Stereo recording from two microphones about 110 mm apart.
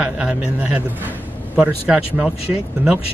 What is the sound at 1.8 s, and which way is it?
Speech, 15° right (ahead or behind).